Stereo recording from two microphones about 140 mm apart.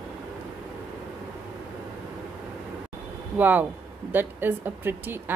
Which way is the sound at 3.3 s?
15° right (ahead or behind).